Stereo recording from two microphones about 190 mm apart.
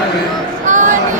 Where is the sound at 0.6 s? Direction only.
40° right (ahead or behind).